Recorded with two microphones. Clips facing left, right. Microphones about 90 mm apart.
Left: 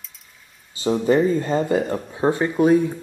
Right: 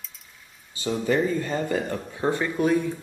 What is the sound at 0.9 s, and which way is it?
Speech, 35° left (ahead or behind).